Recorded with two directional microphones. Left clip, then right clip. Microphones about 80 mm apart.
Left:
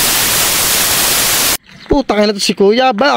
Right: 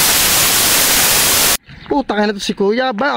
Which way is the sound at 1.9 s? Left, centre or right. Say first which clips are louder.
Left 4 dB; centre.